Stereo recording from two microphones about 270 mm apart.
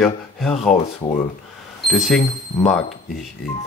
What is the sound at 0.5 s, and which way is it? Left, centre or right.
Speech, left.